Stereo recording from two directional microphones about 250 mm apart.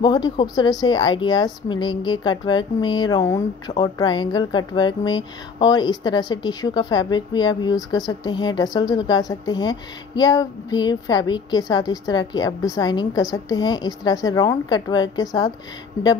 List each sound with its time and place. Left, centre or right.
0.0 s speech: centre